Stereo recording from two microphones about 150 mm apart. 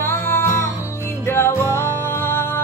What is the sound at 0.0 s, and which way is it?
Music, 15° left (ahead or behind).